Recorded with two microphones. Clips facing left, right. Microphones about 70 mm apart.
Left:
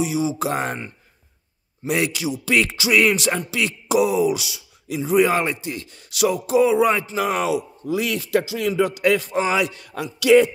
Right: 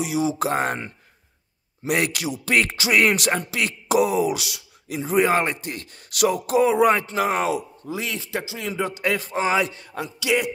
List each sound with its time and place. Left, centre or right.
0.0 s speech: right
0.5 s a man's voice: right
1.9 s speech: right
7.9 s a man's voice: right
10.2 s speech: centre